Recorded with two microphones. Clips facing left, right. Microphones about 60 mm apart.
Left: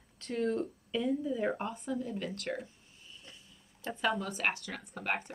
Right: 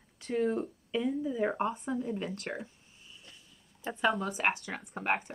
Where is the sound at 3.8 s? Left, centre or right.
Centre.